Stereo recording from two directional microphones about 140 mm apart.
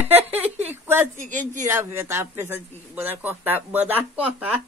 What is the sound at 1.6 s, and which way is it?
Speech, 20° right (ahead or behind).